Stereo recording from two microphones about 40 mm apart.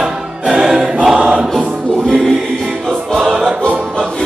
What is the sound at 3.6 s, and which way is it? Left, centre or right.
Music, left.